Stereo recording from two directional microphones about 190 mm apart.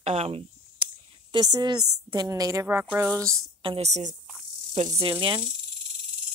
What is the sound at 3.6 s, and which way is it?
A woman's voice, 30° right (ahead or behind).